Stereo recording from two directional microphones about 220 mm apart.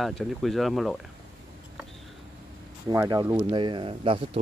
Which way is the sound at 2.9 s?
15° right (ahead or behind).